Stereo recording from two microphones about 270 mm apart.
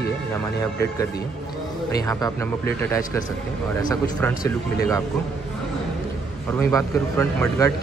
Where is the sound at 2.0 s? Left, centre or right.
Centre.